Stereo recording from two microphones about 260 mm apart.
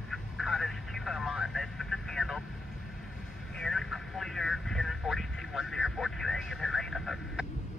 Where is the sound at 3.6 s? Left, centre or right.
Centre.